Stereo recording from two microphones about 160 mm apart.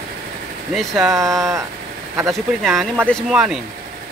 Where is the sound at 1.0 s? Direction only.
20° right (ahead or behind).